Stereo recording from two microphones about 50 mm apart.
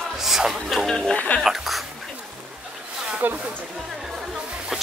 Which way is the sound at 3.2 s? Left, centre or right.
Right.